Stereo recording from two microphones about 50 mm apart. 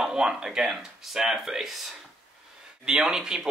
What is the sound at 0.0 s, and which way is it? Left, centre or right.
Speech, centre.